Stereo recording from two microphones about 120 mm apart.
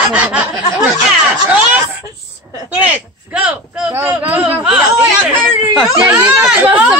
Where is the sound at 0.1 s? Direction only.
10° right (ahead or behind).